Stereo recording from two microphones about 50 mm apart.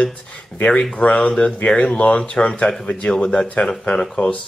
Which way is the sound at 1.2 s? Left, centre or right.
Centre.